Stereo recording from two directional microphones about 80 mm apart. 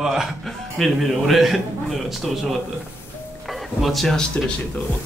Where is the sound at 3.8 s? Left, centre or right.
Centre.